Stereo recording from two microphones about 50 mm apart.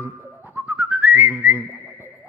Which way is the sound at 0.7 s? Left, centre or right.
Right.